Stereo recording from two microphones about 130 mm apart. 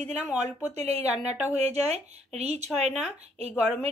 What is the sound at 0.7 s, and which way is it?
Speech, 55° right (ahead or behind).